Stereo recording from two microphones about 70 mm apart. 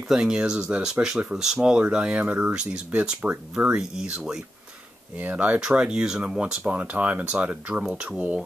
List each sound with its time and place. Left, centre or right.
0.1 s speech: centre
4.0 s speech: centre
5.1 s speech: right